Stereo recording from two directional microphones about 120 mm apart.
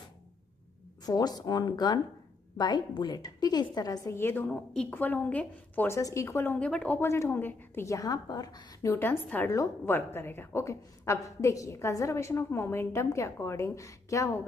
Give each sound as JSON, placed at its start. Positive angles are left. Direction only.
{"t": 1.0, "sound": "a woman's voice", "side_deg": 35}
{"t": 4.5, "sound": "a woman's voice", "side_deg": 5}
{"t": 5.9, "sound": "a woman's voice", "side_deg": 25}
{"t": 8.9, "sound": "a woman's voice", "side_deg": 15}